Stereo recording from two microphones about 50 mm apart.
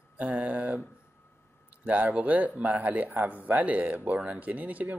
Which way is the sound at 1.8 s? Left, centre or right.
Right.